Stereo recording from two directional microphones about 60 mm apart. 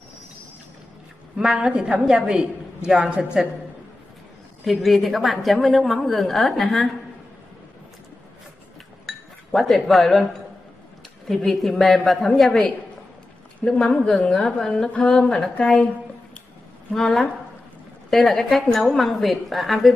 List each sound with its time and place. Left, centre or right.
1.4 s a woman's voice: centre
4.6 s a woman's voice: centre
9.0 s chink: centre
11.2 s a woman's voice: centre
16.9 s a woman's voice: centre